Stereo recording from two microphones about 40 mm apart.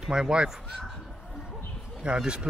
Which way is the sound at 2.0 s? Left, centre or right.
Right.